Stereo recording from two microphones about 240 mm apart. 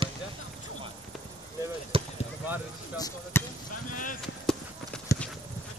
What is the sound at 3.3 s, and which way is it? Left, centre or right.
Basketball bounce, centre.